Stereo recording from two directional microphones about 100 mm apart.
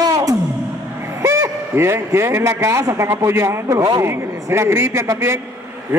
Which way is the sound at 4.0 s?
25° right (ahead or behind).